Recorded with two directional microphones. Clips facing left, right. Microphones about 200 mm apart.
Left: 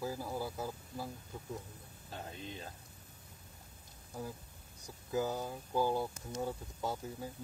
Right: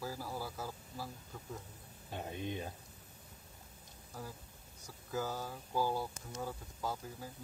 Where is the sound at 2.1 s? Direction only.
20° right (ahead or behind).